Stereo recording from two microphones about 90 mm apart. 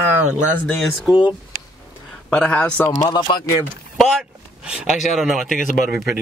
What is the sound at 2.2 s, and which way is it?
Speech, 10° left (ahead or behind).